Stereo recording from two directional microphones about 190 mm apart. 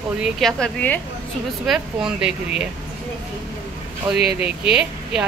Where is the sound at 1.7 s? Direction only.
5° right (ahead or behind).